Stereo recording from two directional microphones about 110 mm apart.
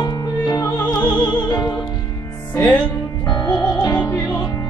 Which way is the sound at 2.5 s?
15° left (ahead or behind).